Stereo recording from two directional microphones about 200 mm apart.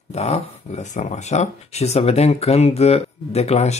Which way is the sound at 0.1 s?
35° left (ahead or behind).